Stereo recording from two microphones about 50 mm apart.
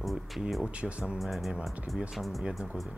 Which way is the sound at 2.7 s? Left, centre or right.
Right.